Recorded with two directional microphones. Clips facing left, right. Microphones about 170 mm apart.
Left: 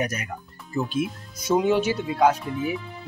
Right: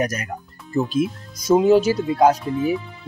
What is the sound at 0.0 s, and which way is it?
Speech, 40° right (ahead or behind).